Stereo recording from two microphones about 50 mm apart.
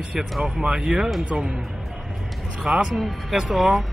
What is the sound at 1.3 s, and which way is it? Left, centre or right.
Speech, right.